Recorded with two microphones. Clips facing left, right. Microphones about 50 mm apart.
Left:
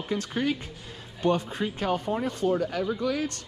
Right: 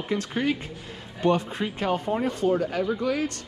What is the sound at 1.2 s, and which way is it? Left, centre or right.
Speech, right.